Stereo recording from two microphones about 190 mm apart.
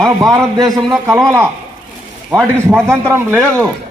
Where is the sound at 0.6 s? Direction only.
Centre (ahead or behind).